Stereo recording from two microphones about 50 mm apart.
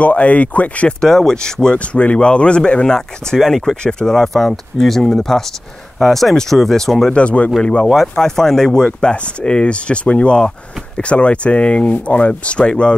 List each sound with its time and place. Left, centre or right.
0.0 s speech: left
1.0 s a man's voice: centre
7.1 s speech: left
8.2 s a man's voice: centre
8.8 s speech: left